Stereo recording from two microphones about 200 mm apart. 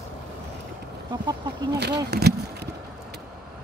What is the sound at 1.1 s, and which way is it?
Speech, 20° right (ahead or behind).